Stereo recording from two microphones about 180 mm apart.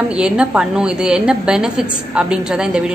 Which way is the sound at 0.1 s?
5° right (ahead or behind).